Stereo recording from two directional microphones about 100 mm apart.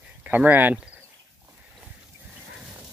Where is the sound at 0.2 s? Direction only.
15° right (ahead or behind).